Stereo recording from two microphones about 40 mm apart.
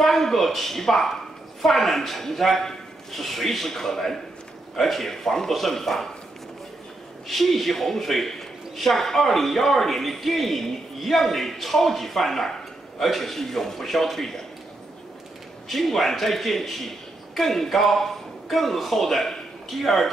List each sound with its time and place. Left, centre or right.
0.0 s a woman's voice: centre
7.2 s a man's voice: centre
15.7 s a man's voice: centre